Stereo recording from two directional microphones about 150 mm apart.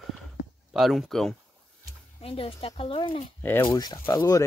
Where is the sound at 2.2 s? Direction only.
40° left (ahead or behind).